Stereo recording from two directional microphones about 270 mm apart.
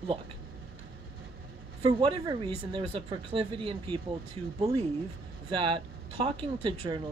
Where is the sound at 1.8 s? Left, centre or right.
Centre.